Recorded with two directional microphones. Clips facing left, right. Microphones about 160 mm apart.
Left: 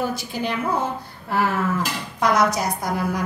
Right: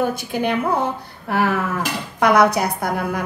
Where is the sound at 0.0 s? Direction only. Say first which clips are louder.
Right 4 dB; 55° right (ahead or behind).